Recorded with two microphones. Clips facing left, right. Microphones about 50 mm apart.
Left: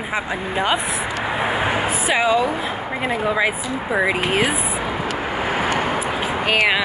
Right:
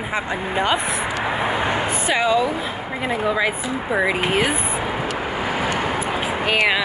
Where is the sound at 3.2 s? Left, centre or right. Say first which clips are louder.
Even; centre.